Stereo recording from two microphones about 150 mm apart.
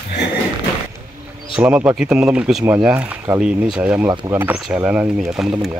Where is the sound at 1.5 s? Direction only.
10° right (ahead or behind).